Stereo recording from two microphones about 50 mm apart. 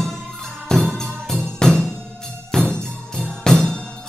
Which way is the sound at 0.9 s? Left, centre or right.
Centre.